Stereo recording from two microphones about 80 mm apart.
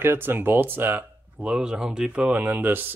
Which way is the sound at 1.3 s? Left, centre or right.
Centre.